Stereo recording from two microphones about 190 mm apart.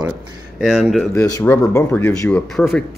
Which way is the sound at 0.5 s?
5° right (ahead or behind).